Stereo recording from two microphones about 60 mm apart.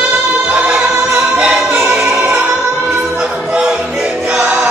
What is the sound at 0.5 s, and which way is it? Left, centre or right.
Music, centre.